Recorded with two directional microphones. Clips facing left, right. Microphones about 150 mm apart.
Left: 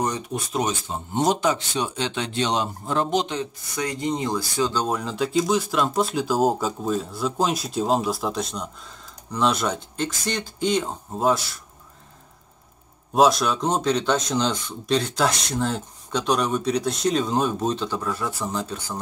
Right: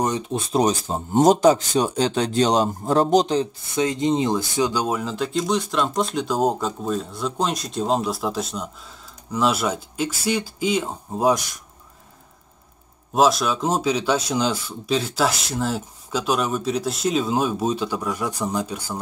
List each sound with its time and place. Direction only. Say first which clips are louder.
0.0 s speech: right 3 dB; 20° right (ahead or behind); by 3.4 s 35° right (ahead or behind)
3.7 s speech: right 6 dB; 20° right (ahead or behind)
13.1 s speech: even; centre (ahead or behind)